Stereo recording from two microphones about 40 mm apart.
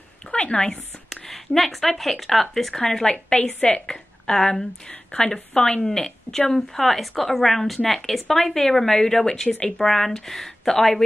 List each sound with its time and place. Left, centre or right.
0.3 s speech: left
1.1 s speech: centre
3.1 s a woman's voice: left; by 11.1 s centre